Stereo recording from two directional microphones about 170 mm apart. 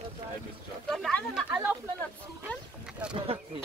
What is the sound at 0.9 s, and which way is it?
Speech, centre (ahead or behind).